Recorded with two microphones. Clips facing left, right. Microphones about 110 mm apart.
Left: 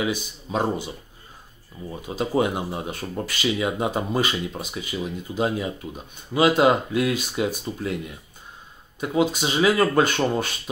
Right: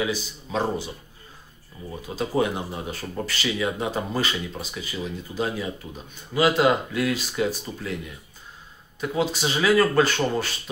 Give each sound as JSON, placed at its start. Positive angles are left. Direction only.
{"t": 0.0, "sound": "speech", "side_deg": 15}
{"t": 2.0, "sound": "speech", "side_deg": 20}
{"t": 9.0, "sound": "speech", "side_deg": 20}